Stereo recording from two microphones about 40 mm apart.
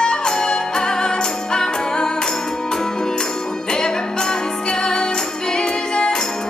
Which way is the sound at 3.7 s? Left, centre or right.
Centre.